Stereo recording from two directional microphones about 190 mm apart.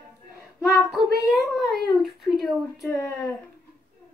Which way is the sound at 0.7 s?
Centre (ahead or behind).